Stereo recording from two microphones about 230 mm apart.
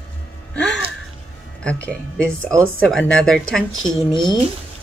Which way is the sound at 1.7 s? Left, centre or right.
Centre.